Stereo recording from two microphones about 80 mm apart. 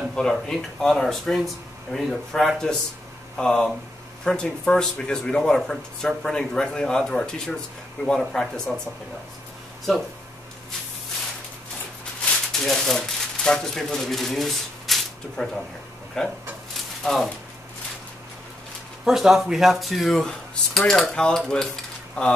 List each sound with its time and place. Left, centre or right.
0.1 s speech: centre
12.3 s speech: centre
19.0 s speech: centre